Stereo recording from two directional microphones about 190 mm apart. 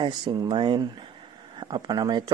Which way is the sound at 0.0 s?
25° right (ahead or behind).